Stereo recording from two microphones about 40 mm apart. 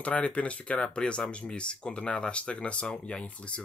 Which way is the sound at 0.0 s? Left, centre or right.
Left.